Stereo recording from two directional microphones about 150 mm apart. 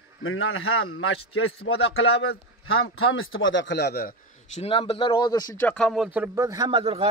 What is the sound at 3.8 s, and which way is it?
Speech, 90° left.